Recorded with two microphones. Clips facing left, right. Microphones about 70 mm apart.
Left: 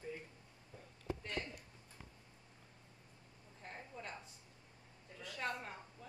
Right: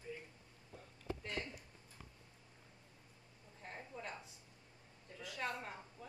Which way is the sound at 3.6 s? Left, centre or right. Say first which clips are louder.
Right 1 dB; centre.